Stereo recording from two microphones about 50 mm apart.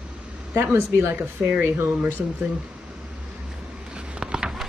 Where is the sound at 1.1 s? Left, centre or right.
Right.